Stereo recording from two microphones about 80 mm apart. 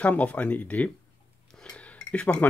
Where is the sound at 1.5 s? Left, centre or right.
Centre.